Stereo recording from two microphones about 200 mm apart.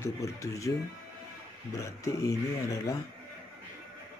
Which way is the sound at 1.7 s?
15° left (ahead or behind).